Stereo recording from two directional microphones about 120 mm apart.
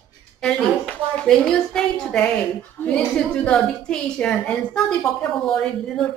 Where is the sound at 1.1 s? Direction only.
5° left (ahead or behind).